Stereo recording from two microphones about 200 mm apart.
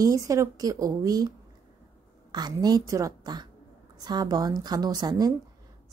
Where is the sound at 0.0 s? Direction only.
15° right (ahead or behind).